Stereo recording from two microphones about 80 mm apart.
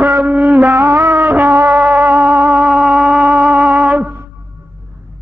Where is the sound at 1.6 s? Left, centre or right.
Right.